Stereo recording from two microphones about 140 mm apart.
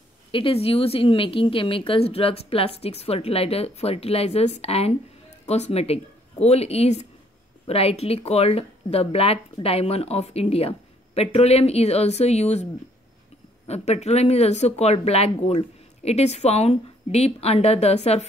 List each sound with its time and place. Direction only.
0.3 s speech: 40° left (ahead or behind)
13.7 s speech: 50° left (ahead or behind)